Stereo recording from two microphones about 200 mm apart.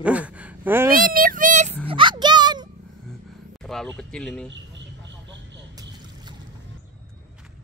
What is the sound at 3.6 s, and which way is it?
Speech, 5° left (ahead or behind).